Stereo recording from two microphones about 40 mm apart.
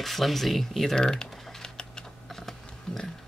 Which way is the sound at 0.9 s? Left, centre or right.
Centre.